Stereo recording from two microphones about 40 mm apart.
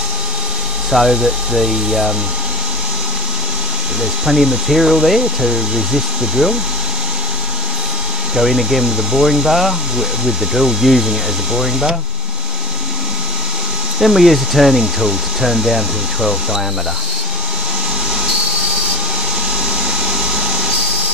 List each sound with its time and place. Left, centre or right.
0.9 s speech: centre
4.3 s speech: centre
8.4 s speech: centre
13.9 s speech: centre
19.7 s a sound: centre